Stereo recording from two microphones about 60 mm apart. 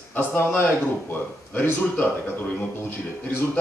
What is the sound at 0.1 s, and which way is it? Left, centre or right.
A man's voice, left.